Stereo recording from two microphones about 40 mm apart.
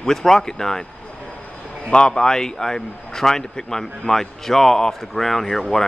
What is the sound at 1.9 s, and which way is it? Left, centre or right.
A man's voice, left.